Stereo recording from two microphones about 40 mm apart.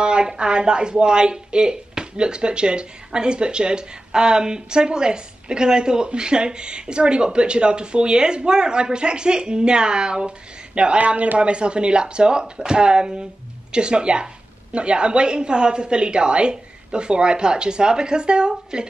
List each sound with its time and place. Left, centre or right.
0.0 s speech: right